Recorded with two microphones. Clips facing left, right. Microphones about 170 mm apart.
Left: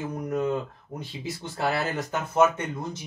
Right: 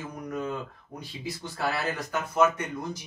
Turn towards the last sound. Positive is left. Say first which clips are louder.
# left 1 dB
turn(degrees=25)  # may be behind; listen again after turning